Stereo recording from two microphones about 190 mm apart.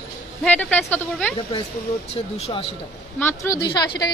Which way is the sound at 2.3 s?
30° left (ahead or behind).